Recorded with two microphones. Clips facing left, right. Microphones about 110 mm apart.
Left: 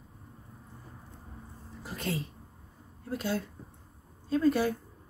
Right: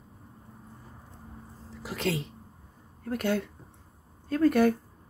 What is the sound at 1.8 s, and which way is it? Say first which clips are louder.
Speech: right 4 dB; 90° right.